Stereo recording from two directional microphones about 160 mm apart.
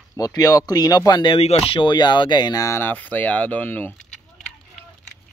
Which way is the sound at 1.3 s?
40° left (ahead or behind).